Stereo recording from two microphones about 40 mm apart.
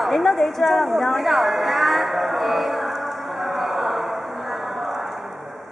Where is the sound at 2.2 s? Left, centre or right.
Centre.